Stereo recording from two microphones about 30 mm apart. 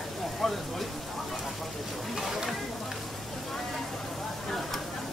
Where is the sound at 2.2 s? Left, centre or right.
Centre.